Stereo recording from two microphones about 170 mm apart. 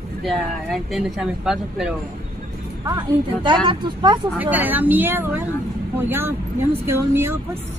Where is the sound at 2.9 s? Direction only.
30° right (ahead or behind).